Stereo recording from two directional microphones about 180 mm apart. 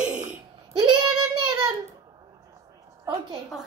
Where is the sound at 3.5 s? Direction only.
5° right (ahead or behind).